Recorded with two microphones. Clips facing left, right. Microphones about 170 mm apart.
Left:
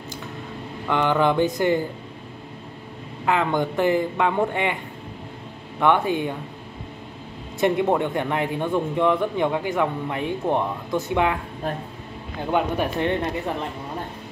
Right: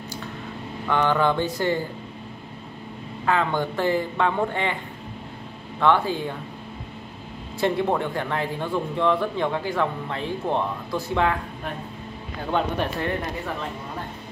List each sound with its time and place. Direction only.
0.8 s speech: 15° left (ahead or behind)
3.3 s speech: 20° left (ahead or behind)
5.8 s speech: 20° left (ahead or behind)
7.6 s speech: 20° left (ahead or behind)
12.4 s speech: 10° left (ahead or behind)